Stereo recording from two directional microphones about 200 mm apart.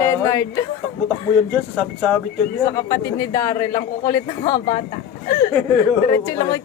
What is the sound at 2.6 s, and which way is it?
Speech, 15° left (ahead or behind).